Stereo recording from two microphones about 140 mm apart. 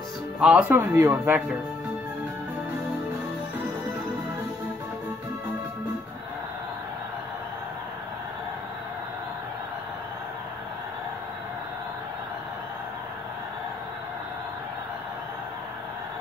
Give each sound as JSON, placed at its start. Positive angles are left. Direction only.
{"t": 0.4, "sound": "speech", "side_deg": -10}